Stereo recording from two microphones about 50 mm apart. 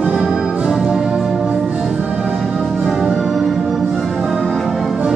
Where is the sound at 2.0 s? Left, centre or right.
Right.